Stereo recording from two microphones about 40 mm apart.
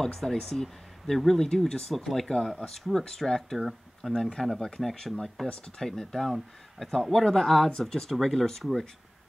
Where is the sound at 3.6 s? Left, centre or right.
Centre.